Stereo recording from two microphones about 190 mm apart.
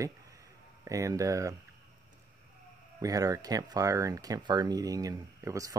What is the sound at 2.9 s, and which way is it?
Speech, 20° right (ahead or behind).